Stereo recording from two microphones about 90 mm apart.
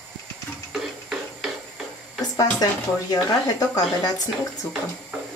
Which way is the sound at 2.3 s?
45° left (ahead or behind).